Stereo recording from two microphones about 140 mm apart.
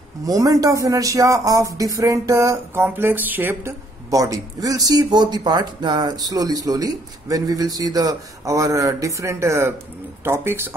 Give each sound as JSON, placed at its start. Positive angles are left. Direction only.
{"t": 0.2, "sound": "speech", "side_deg": -25}
{"t": 4.1, "sound": "speech", "side_deg": -25}